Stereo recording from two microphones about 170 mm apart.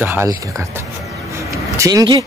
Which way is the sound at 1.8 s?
20° right (ahead or behind).